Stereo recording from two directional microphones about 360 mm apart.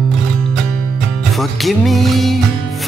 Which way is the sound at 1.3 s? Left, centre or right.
Centre.